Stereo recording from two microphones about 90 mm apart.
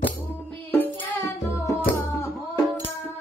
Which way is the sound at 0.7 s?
20° left (ahead or behind).